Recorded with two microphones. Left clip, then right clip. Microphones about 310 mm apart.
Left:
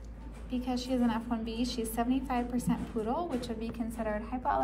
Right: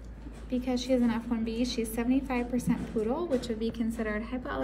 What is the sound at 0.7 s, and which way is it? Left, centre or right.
A woman's voice, left.